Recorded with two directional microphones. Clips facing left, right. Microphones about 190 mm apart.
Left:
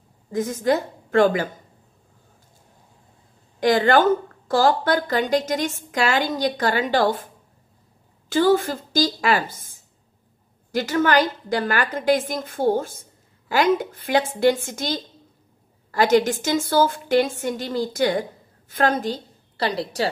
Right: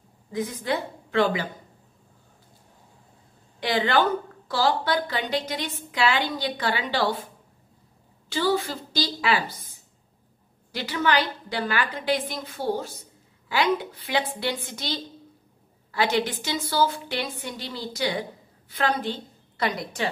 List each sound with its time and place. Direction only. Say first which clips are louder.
0.3 s a woman's voice: left 6 dB; 45° left (ahead or behind)
3.5 s a woman's voice: left 6 dB; 45° left (ahead or behind)
8.3 s a woman's voice: left 7 dB; 50° left (ahead or behind); by 20.1 s 35° left (ahead or behind)